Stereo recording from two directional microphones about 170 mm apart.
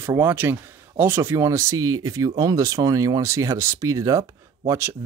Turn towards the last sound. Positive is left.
turn(degrees=-15)  # may be behind; listen again after turning